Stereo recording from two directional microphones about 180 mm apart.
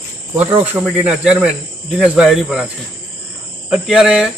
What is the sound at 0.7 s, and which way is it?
Speech, 10° right (ahead or behind).